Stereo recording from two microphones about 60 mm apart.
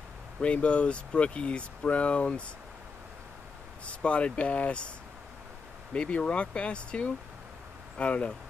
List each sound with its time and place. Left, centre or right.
0.4 s speech: left
3.8 s speech: centre
5.9 s speech: left